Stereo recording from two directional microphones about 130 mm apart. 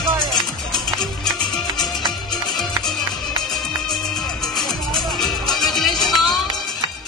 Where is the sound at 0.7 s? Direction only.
5° left (ahead or behind).